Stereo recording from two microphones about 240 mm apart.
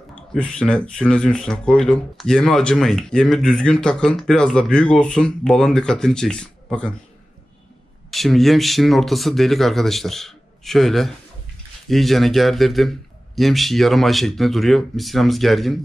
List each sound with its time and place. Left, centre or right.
0.3 s speech: centre
8.1 s speech: centre